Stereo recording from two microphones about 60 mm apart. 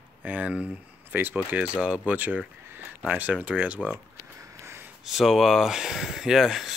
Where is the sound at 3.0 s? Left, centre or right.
Right.